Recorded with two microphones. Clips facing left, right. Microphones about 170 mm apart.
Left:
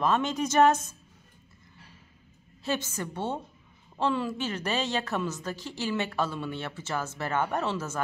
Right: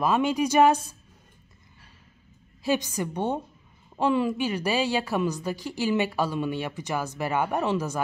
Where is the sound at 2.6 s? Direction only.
15° right (ahead or behind).